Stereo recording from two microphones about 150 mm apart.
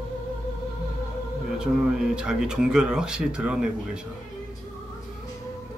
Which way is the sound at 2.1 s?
5° right (ahead or behind).